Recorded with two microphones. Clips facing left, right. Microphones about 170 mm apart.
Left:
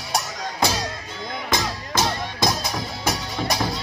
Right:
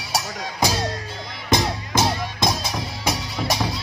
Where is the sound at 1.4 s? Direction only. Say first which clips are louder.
Right 5 dB; 20° right (ahead or behind).